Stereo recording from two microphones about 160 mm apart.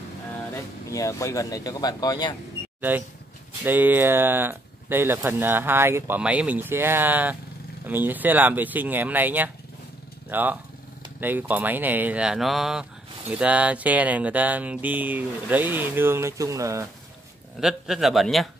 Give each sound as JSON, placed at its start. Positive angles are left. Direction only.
{"t": 0.9, "sound": "speech", "side_deg": 20}
{"t": 2.9, "sound": "speech", "side_deg": -10}
{"t": 17.6, "sound": "a man's voice", "side_deg": 0}